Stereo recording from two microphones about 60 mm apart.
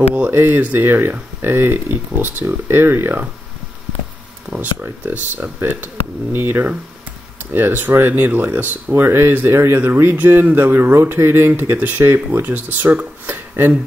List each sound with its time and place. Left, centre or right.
0.3 s speech: right
0.6 s speech: right
0.8 s speech: right
4.6 s speech: right